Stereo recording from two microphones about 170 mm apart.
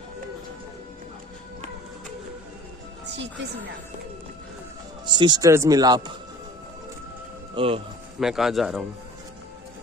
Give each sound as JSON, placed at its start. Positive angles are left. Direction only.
{"t": 5.0, "sound": "speech", "side_deg": -25}
{"t": 7.5, "sound": "speech", "side_deg": -35}
{"t": 8.2, "sound": "speech", "side_deg": 0}